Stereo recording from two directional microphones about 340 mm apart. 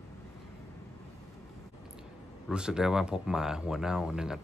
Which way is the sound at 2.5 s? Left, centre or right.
Centre.